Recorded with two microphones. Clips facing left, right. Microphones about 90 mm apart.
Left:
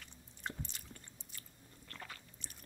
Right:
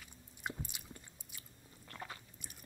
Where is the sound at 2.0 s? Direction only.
20° right (ahead or behind).